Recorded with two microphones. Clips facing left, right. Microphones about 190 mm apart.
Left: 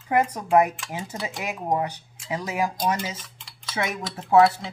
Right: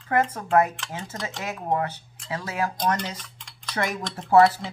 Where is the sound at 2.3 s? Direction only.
15° left (ahead or behind); by 4.6 s centre (ahead or behind).